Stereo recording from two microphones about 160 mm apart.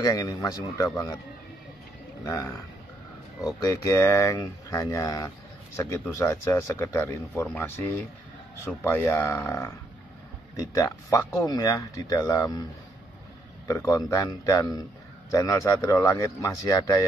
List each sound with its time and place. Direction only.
0.0 s speech: 25° left (ahead or behind)
2.2 s speech: 20° left (ahead or behind)
3.6 s speech: 20° left (ahead or behind)
13.7 s speech: 20° left (ahead or behind)